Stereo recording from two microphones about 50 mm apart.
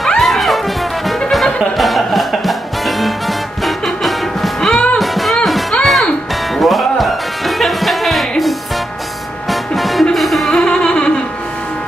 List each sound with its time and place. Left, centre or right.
0.2 s music: centre
3.6 s music: centre
4.6 s music: centre
4.9 s music: centre
10.5 s music: centre